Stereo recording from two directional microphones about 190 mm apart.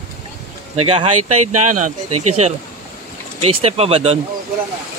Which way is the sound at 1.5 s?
40° right (ahead or behind).